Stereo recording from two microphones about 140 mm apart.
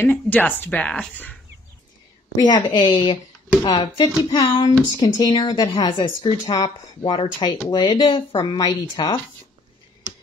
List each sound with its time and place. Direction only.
0.0 s speech: 15° left (ahead or behind)
2.3 s speech: 30° left (ahead or behind)